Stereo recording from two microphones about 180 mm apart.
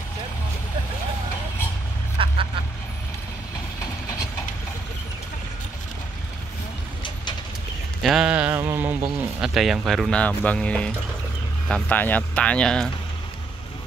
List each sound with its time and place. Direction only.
2.2 s duck: 30° right (ahead or behind)
8.0 s a sound: centre (ahead or behind)
9.4 s speech: centre (ahead or behind)